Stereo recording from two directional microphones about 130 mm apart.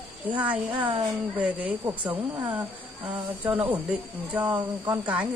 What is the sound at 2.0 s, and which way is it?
Speech, 15° right (ahead or behind).